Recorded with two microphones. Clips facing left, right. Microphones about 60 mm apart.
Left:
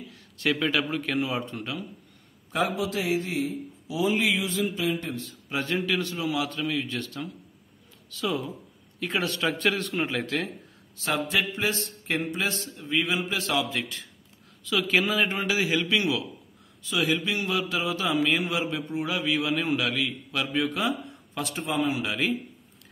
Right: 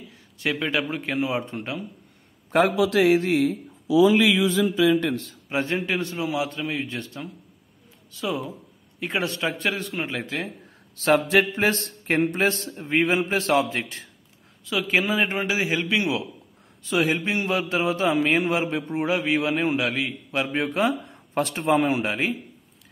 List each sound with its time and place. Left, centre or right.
0.1 s a sound: centre
0.8 s a man's voice: centre
2.5 s a man's voice: right
5.5 s a man's voice: right; by 10.5 s centre
11.0 s a man's voice: right
14.6 s a man's voice: right
21.4 s a man's voice: right